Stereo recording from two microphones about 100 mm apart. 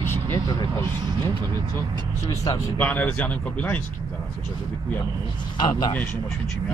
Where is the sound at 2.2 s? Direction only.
35° left (ahead or behind).